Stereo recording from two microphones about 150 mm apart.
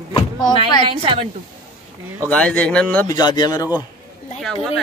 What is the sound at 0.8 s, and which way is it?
Speech, 40° right (ahead or behind).